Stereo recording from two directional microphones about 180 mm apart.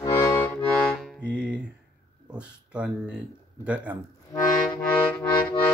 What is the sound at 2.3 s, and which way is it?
Speech, 5° right (ahead or behind).